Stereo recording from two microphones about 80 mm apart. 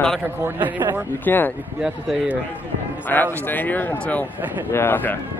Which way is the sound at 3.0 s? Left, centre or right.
Left.